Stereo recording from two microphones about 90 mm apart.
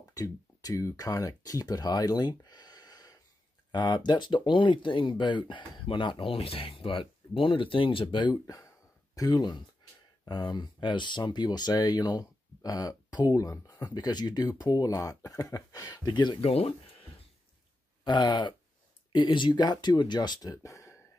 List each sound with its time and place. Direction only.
0.1 s speech: 40° left (ahead or behind); by 8.4 s 65° left (ahead or behind)
9.1 s speech: 45° left (ahead or behind); by 16.7 s 90° left
18.0 s a man's voice: 55° left (ahead or behind); by 21.0 s 35° left (ahead or behind)